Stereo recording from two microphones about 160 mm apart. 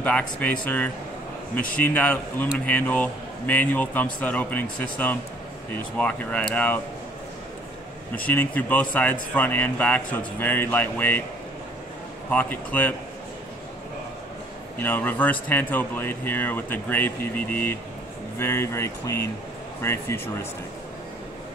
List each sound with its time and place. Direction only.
0.0 s a man's voice: 10° left (ahead or behind)
8.2 s a man's voice: 10° left (ahead or behind)
12.3 s a man's voice: 10° left (ahead or behind)
14.8 s a man's voice: 10° left (ahead or behind)